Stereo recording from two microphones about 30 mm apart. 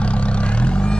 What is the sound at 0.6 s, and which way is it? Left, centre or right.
Vehicle, left.